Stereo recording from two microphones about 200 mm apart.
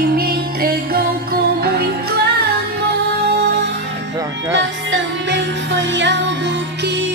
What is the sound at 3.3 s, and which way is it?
Music, 55° right (ahead or behind).